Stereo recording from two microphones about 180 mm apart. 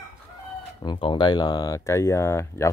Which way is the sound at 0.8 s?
30° left (ahead or behind).